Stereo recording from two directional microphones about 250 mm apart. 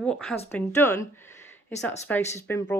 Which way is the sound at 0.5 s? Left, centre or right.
Centre.